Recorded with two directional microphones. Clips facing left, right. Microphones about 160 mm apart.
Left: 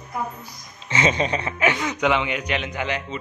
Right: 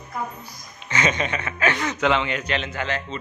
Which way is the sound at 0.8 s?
30° left (ahead or behind).